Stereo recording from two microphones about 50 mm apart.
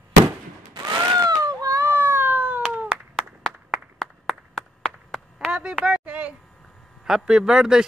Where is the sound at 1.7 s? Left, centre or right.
Right.